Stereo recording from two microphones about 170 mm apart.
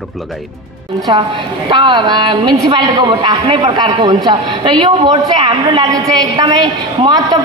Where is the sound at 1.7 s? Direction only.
25° right (ahead or behind).